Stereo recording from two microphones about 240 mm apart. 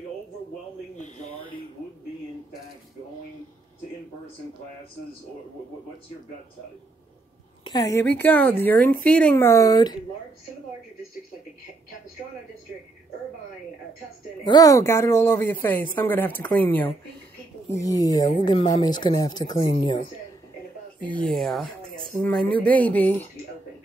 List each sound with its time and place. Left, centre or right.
0.9 s a sound: left
7.6 s a woman's voice: centre
14.4 s speech: centre
21.1 s speech: centre